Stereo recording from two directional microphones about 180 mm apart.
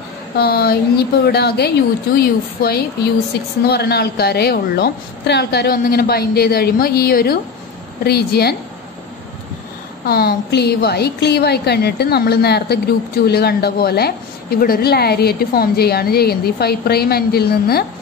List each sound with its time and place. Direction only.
0.4 s a woman's voice: 60° left (ahead or behind)
10.0 s a woman's voice: 60° left (ahead or behind)